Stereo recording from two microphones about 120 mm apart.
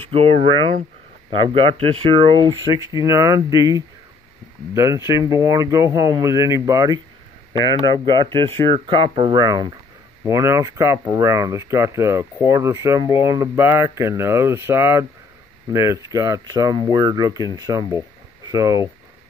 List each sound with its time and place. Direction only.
0.0 s speech: 50° right (ahead or behind); by 7.0 s 30° right (ahead or behind)
7.7 s speech: 30° left (ahead or behind)
8.7 s speech: 45° right (ahead or behind); by 18.9 s 30° right (ahead or behind)